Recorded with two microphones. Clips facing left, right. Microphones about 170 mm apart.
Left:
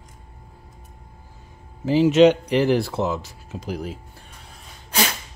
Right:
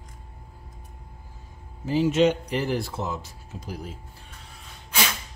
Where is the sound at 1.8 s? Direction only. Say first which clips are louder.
Left 6 dB; 90° left.